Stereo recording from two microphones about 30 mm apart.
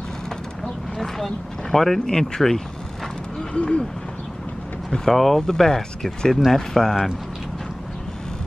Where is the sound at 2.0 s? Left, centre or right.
Left.